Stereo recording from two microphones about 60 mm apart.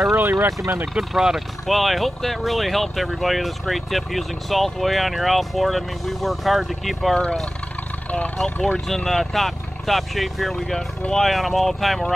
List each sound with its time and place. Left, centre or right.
0.1 s speech: right
0.9 s speech: centre
8.5 s speech: centre